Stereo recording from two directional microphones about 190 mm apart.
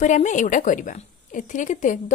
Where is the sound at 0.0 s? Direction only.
40° left (ahead or behind).